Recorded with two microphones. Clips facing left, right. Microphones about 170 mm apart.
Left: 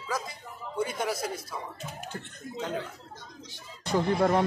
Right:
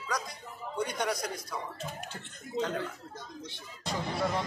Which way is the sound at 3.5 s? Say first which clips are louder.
Left 7 dB; 55° left (ahead or behind).